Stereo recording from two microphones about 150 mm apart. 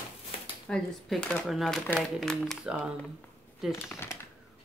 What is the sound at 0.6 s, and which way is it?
Speech, 5° left (ahead or behind).